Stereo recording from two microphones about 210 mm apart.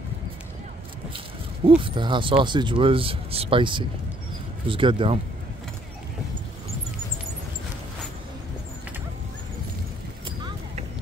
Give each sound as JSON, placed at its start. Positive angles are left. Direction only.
{"t": 1.8, "sound": "speech", "side_deg": -25}